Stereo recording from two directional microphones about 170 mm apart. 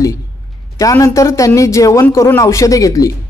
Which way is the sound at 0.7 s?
20° left (ahead or behind).